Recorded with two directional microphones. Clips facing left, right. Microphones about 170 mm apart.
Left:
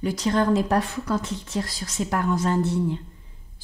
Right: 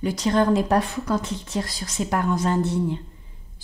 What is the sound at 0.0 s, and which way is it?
Speech, 20° right (ahead or behind).